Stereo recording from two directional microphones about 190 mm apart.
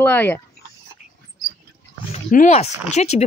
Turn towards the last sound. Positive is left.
turn(degrees=35)  # may be behind; listen again after turning